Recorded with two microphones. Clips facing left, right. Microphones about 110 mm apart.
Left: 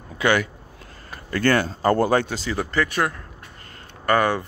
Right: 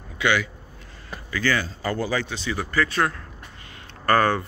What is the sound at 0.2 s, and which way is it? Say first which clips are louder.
Speech: left 3 dB; 45° left (ahead or behind).